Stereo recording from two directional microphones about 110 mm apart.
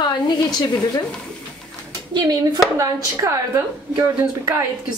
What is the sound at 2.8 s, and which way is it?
A woman's voice, 30° right (ahead or behind).